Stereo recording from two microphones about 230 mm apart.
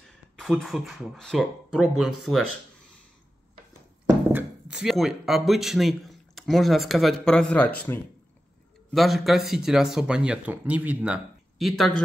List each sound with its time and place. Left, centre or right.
0.4 s speech: centre
4.3 s speech: centre
8.9 s speech: centre